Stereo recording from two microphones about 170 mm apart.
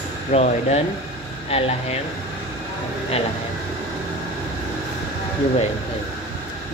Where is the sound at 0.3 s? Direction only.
40° left (ahead or behind).